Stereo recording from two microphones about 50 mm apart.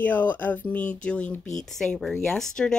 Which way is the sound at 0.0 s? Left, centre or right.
Left.